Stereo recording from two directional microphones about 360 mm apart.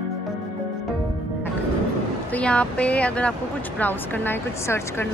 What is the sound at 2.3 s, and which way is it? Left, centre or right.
A woman's voice, centre.